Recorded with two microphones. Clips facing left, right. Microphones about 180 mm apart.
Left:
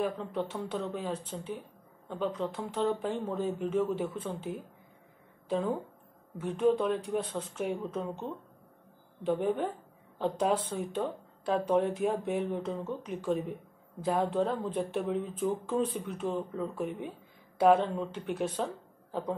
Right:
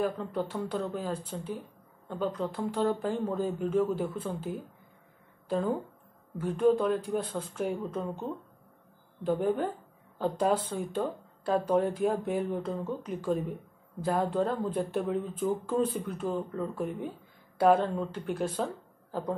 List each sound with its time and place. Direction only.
0.0 s speech: centre (ahead or behind)
5.5 s speech: centre (ahead or behind)